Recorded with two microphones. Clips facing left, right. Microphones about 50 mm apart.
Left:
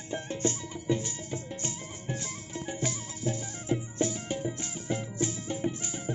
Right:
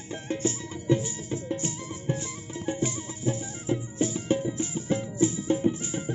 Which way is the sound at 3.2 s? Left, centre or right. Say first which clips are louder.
Right 3 dB; centre.